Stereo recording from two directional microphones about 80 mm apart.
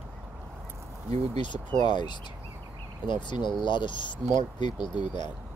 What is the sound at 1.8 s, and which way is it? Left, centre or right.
Speech, left.